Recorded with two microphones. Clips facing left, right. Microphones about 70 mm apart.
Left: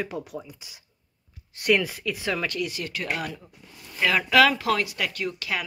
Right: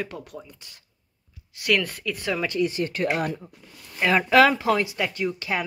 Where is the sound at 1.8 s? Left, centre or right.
Centre.